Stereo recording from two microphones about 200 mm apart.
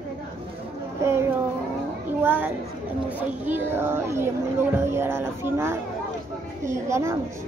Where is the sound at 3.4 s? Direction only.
10° right (ahead or behind).